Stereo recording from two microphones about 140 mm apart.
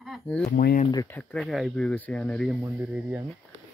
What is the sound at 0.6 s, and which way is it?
Speech, 90° left.